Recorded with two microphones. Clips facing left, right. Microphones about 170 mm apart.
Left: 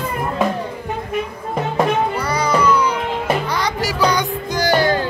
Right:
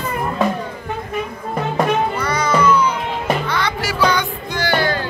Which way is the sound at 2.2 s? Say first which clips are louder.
Right 1 dB; 35° left (ahead or behind).